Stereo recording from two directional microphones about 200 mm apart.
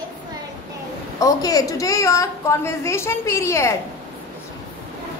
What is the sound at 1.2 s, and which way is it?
A woman's voice, 15° left (ahead or behind).